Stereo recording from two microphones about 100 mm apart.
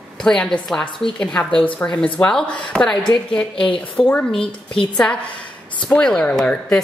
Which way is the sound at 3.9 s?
10° left (ahead or behind).